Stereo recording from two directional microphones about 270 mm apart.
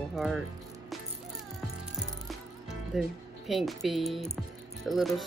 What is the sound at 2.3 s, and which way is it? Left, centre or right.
Music, centre.